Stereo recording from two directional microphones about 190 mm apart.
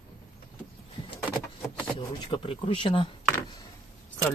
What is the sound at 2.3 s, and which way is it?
Speech, 25° left (ahead or behind).